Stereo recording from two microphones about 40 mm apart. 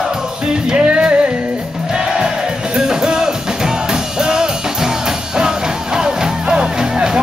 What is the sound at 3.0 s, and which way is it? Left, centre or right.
Music, centre.